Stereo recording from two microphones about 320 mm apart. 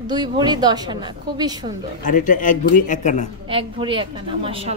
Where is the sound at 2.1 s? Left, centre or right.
Left.